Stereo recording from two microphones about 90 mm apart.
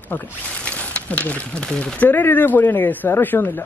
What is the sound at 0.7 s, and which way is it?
Speech, 15° left (ahead or behind).